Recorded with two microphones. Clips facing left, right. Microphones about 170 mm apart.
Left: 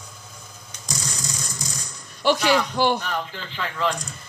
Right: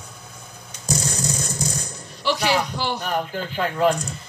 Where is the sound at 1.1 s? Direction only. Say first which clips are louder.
Right 7 dB; 55° right (ahead or behind).